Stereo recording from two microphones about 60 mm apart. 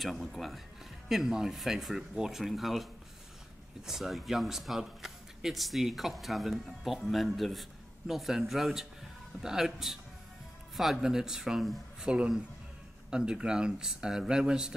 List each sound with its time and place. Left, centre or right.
0.0 s a man's voice: centre
12.1 s speech: centre